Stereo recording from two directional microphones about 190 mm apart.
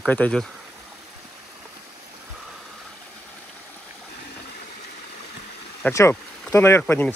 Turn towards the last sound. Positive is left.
turn(degrees=10)  # may be behind; listen again after turning